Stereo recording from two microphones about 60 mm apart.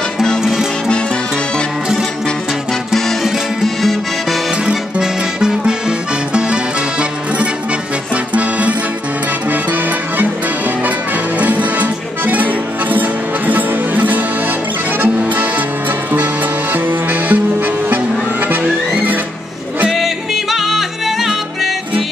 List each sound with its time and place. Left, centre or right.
0.4 s music: centre
3.6 s music: centre
4.6 s accordion: centre
9.5 s music: right
11.3 s music: right
16.7 s music: right
18.6 s music: right
19.9 s music: centre